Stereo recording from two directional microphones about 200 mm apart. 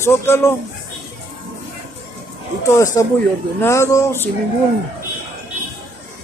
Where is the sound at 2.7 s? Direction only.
15° left (ahead or behind).